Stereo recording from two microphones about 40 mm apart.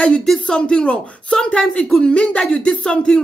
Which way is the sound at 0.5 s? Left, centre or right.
Left.